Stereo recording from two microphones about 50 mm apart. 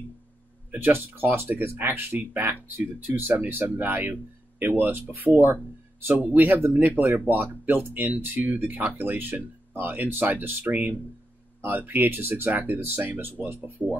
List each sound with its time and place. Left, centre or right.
0.7 s speech: right